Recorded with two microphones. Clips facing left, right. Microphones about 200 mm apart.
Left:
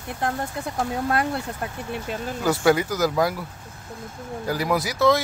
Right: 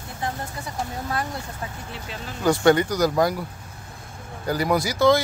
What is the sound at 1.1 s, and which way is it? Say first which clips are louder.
Speech: left 5 dB; 60° left (ahead or behind).